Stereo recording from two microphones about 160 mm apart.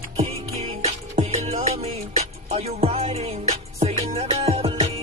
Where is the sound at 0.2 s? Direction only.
40° right (ahead or behind).